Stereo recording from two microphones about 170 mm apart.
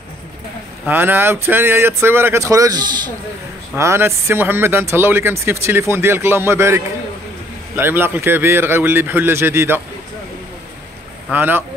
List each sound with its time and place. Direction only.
0.8 s speech: 10° right (ahead or behind)
11.3 s speech: 10° right (ahead or behind)